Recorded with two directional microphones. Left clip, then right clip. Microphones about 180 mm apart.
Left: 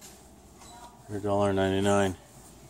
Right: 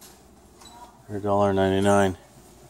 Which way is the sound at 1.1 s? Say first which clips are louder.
Right 5 dB; 35° right (ahead or behind).